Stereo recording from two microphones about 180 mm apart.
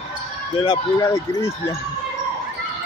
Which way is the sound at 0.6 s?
20° left (ahead or behind).